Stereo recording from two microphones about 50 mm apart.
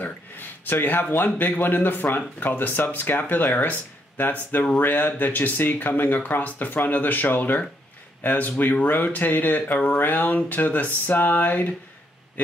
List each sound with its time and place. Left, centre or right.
0.0 s speech: left